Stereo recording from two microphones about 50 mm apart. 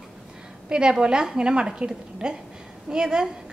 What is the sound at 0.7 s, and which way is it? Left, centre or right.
A woman's voice, centre.